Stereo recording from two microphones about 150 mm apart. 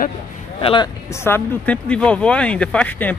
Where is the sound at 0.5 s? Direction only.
35° left (ahead or behind).